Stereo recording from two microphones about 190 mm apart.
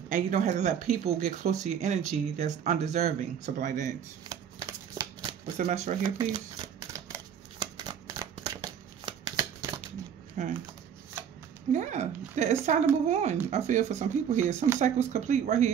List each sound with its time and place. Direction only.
0.1 s speech: 45° right (ahead or behind)
4.3 s shuffling cards: 20° right (ahead or behind)
5.6 s speech: 40° right (ahead or behind)
6.9 s a sound: 20° right (ahead or behind)
10.4 s typing: 40° right (ahead or behind)
11.7 s speech: 40° right (ahead or behind)